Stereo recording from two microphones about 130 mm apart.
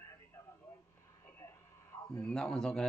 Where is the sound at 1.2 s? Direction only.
20° left (ahead or behind).